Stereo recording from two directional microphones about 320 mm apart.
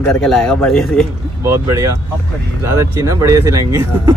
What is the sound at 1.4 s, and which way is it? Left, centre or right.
Speech, centre.